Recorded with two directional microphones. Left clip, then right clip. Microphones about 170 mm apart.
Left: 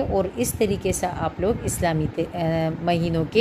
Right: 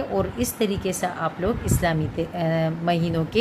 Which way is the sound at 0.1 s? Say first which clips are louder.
Left 2 dB; 25° left (ahead or behind).